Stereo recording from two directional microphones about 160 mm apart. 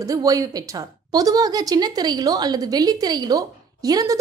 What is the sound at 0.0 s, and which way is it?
A woman's voice, 20° right (ahead or behind).